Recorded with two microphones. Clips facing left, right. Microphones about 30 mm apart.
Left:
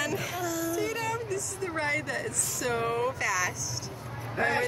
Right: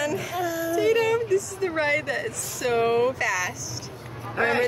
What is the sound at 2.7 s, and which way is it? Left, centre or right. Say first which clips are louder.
Speech: right 8 dB; right.